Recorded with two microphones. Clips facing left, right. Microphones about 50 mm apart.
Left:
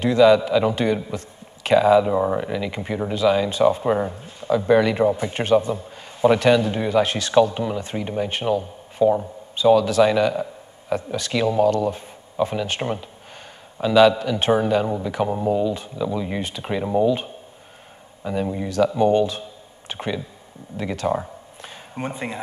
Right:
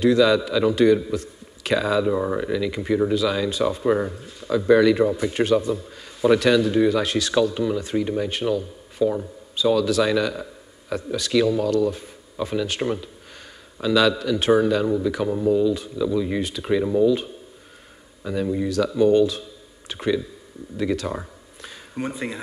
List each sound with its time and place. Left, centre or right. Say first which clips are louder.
0.0 s speech: left 2 dB; centre